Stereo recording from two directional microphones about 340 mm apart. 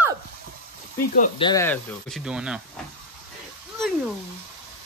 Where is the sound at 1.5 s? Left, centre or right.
Centre.